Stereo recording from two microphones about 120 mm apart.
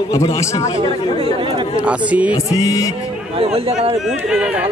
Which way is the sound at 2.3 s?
30° left (ahead or behind).